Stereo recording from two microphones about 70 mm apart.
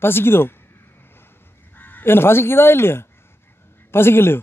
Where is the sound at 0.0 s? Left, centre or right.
Left.